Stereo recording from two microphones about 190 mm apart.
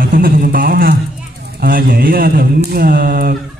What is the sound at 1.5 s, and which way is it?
A man's voice, 50° right (ahead or behind).